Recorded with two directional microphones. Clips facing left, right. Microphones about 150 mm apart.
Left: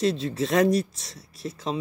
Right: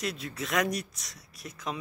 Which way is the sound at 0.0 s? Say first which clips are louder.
Left 10 dB; 25° left (ahead or behind).